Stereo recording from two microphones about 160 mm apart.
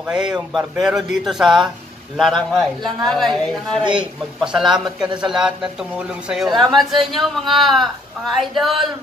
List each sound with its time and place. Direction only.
0.0 s a man's voice: 5° right (ahead or behind)
6.5 s speech: 30° right (ahead or behind)
6.8 s a man's voice: centre (ahead or behind)